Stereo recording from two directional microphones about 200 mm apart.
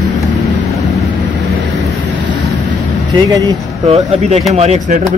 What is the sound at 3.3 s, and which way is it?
Speech, 15° right (ahead or behind).